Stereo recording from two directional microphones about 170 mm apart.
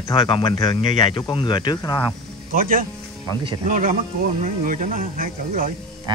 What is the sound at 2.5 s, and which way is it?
Speech, 55° right (ahead or behind).